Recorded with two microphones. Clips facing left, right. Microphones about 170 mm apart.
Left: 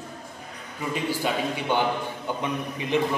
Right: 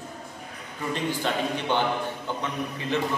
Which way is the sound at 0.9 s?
10° left (ahead or behind).